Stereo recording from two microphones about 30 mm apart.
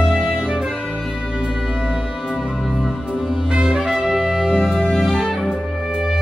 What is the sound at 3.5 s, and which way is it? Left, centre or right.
Music, right.